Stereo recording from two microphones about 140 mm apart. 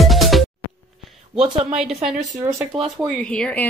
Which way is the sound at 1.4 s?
45° right (ahead or behind).